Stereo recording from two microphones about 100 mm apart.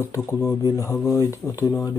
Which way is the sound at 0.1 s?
25° left (ahead or behind).